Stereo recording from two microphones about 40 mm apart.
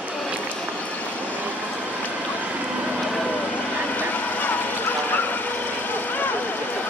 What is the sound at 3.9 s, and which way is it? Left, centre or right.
Vehicle, left.